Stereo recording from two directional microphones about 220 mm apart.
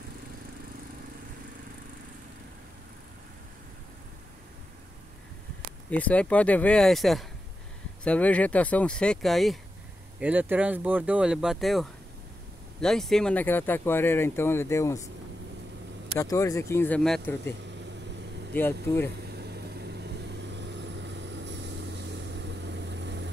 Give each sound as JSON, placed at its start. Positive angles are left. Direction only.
{"t": 5.9, "sound": "speech", "side_deg": 5}
{"t": 16.2, "sound": "speech", "side_deg": 15}
{"t": 19.2, "sound": "vehicle", "side_deg": -50}